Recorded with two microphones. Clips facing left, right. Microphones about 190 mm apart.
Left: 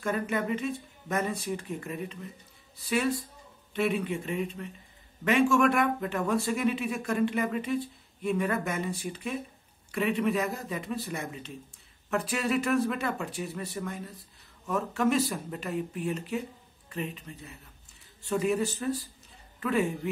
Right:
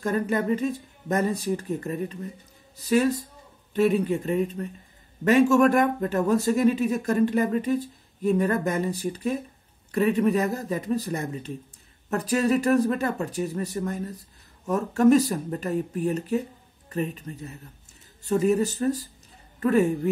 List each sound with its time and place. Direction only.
0.0 s speech: 40° right (ahead or behind)